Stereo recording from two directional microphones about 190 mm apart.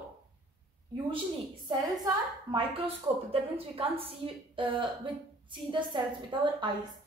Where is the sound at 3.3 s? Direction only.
30° right (ahead or behind).